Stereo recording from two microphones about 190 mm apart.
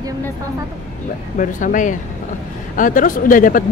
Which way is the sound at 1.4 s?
45° left (ahead or behind).